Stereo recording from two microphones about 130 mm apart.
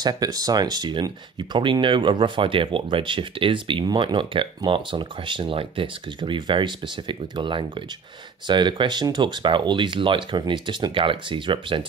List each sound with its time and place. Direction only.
0.0 s speech: 30° right (ahead or behind)